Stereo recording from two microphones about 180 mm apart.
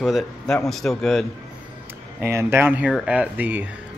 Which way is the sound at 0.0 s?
Centre (ahead or behind).